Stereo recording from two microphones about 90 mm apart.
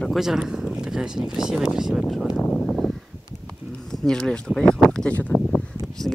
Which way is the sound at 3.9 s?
5° left (ahead or behind).